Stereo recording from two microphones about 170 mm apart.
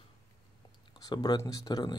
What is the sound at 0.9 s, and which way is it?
Speech, 25° left (ahead or behind).